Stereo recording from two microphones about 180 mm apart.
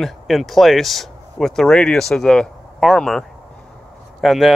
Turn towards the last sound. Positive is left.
turn(degrees=0)  # may be behind; listen again after turning